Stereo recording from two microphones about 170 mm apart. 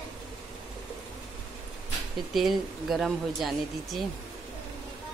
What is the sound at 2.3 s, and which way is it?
Speech, centre (ahead or behind).